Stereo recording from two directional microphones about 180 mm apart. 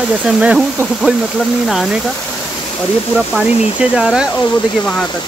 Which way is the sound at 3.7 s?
5° right (ahead or behind).